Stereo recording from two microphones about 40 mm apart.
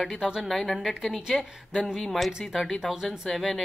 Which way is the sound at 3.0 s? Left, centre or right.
Centre.